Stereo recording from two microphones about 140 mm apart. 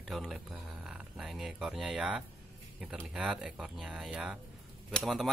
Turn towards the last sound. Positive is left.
turn(degrees=0)  # may be behind; listen again after turning